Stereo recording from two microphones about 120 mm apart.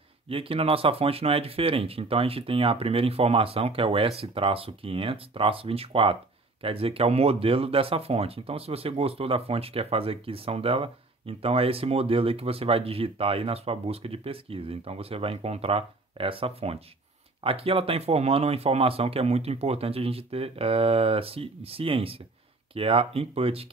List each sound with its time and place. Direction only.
0.3 s speech: 50° right (ahead or behind)